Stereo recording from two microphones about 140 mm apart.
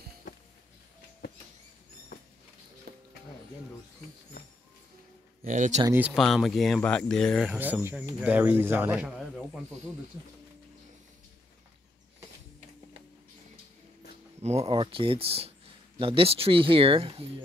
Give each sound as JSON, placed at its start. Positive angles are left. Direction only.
{"t": 5.4, "sound": "speech", "side_deg": -65}
{"t": 6.1, "sound": "speech", "side_deg": 0}
{"t": 7.4, "sound": "speech", "side_deg": -10}
{"t": 14.4, "sound": "speech", "side_deg": -50}